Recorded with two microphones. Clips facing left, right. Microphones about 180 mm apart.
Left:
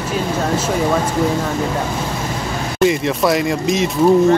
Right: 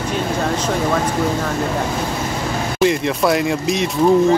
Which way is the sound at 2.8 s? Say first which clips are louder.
Left 1 dB; centre (ahead or behind).